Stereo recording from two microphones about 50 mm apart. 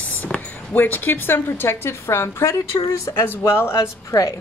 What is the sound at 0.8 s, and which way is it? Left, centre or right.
A woman's voice, left.